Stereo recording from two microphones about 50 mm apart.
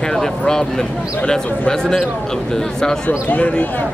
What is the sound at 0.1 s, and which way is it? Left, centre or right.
Speech, centre.